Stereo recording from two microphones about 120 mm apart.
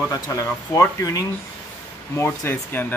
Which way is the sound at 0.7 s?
25° left (ahead or behind).